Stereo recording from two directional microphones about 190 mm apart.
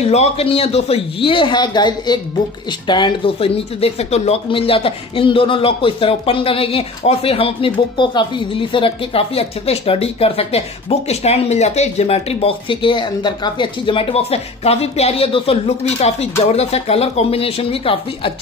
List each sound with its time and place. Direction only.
0.0 s speech: 35° left (ahead or behind)